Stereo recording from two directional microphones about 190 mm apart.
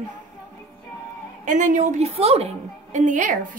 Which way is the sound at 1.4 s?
40° right (ahead or behind).